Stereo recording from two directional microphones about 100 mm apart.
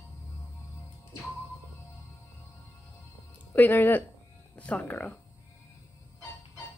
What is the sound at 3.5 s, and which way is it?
Speech, 20° left (ahead or behind).